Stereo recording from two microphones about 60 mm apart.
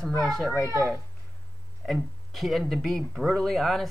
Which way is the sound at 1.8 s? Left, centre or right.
Centre.